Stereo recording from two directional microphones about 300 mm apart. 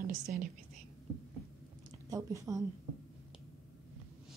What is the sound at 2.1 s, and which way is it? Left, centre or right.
Speech, centre.